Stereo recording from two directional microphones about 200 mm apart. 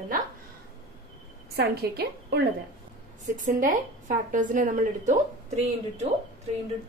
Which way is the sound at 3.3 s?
40° right (ahead or behind).